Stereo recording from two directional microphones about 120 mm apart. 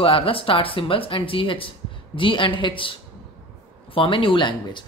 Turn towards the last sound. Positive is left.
turn(degrees=40)  # may be behind; listen again after turning